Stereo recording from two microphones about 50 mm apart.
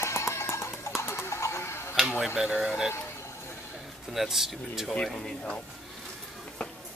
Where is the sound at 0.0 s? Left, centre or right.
Left.